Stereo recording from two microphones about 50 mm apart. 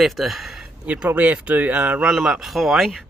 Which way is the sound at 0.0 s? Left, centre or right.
Centre.